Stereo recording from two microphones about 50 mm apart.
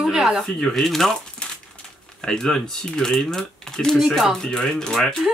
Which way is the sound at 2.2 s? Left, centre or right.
Centre.